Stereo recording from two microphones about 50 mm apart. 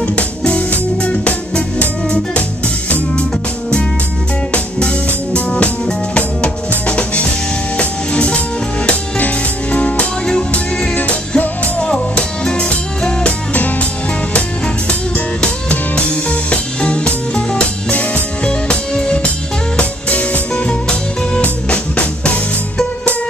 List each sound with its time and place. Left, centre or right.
0.0 s music: left
4.5 s music: left
14.9 s music: left